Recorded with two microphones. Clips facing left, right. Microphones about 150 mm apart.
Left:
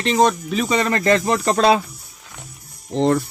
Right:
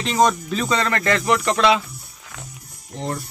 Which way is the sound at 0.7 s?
20° left (ahead or behind).